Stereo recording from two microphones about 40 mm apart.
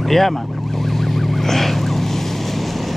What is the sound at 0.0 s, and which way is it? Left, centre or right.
Vehicle, centre.